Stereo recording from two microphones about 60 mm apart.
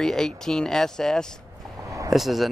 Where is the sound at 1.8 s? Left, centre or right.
Right.